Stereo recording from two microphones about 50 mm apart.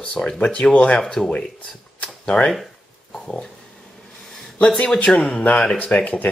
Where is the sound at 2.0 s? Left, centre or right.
Centre.